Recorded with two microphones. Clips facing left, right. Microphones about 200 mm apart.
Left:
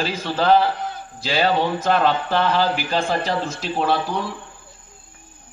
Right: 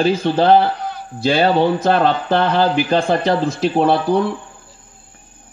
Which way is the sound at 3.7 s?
55° right (ahead or behind).